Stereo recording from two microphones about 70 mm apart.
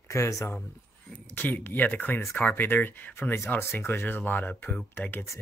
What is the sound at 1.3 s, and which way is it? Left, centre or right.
Speech, left.